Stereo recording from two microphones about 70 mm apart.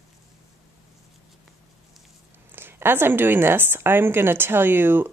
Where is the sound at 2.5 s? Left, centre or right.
Right.